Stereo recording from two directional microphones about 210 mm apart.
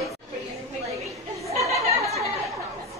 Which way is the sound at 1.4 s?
15° right (ahead or behind).